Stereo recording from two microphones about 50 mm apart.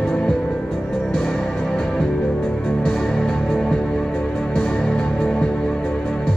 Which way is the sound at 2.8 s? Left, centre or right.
Centre.